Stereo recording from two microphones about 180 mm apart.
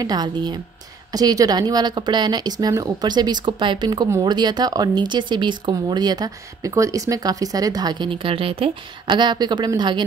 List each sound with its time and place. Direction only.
0.0 s a woman's voice: 20° right (ahead or behind)